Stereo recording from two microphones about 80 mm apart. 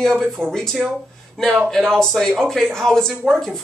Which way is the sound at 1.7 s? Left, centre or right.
Centre.